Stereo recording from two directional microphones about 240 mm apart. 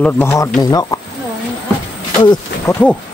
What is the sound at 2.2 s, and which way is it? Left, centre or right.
Speech, centre.